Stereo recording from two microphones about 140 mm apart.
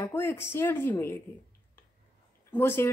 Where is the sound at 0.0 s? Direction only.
15° left (ahead or behind).